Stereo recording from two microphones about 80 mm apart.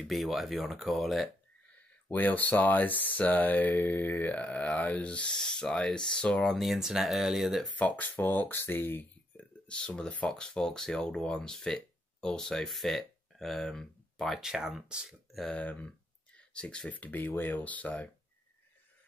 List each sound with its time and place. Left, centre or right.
0.0 s speech: centre
1.8 s speech: left; by 7.7 s centre
7.7 s speech: centre
9.4 s speech: centre
14.5 s speech: centre
15.5 s speech: centre